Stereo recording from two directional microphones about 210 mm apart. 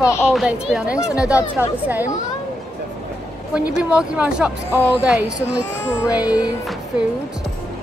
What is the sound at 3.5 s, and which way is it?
Speech, 5° right (ahead or behind).